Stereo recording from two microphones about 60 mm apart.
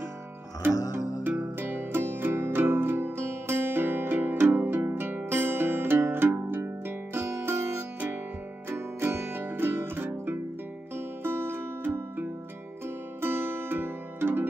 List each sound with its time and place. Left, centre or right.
1.2 s music: right